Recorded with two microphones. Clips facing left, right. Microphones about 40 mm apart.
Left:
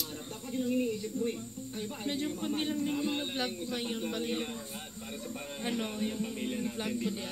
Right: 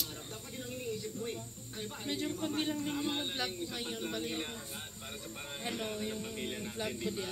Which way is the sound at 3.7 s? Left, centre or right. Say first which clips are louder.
Left 5 dB; centre.